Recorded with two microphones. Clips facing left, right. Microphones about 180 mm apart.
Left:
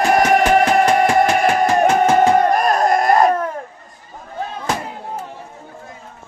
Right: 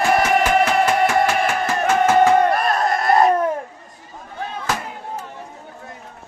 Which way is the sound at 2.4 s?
40° left (ahead or behind).